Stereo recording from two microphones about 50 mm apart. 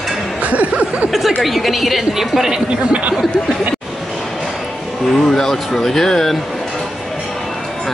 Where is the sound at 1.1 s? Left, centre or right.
Centre.